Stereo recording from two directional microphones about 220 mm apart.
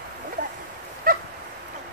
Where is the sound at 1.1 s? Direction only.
40° right (ahead or behind).